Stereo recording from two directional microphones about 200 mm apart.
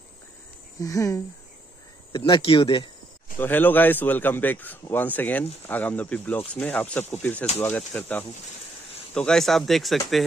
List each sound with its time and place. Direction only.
0.7 s a man's voice: 15° left (ahead or behind)
3.3 s a man's voice: 10° left (ahead or behind)